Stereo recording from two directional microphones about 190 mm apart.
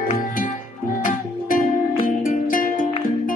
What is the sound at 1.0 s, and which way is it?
Music, 45° left (ahead or behind).